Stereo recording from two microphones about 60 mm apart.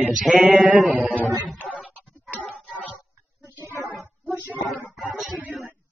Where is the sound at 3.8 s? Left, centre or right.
Centre.